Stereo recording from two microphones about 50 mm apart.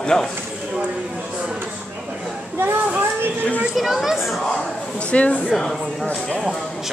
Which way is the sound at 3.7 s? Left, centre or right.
Centre.